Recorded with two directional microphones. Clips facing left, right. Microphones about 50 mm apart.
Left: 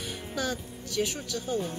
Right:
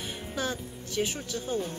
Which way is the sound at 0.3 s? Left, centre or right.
Right.